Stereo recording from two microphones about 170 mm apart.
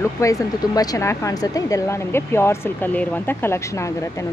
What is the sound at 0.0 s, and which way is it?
Speech, 20° left (ahead or behind).